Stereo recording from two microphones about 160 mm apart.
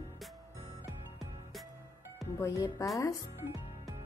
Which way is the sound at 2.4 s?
20° left (ahead or behind).